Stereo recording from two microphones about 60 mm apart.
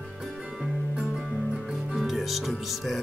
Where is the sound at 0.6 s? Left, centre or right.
Centre.